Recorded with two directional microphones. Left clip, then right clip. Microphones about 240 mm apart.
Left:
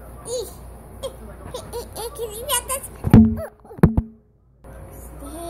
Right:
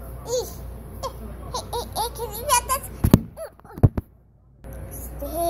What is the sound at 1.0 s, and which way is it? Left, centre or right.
Laughter, centre.